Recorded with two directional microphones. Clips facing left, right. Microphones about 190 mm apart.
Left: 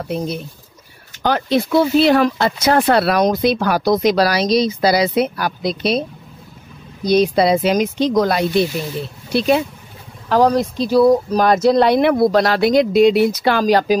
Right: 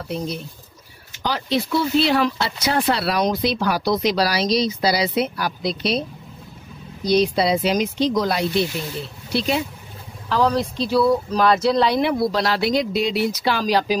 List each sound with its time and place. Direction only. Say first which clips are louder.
1.2 s speech: left 6 dB; 50° left (ahead or behind)
7.1 s speech: left 4 dB; 50° left (ahead or behind)
10.3 s speech: left 5 dB; 45° left (ahead or behind)